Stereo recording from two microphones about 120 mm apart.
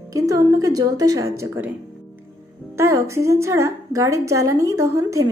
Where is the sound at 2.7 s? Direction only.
25° right (ahead or behind).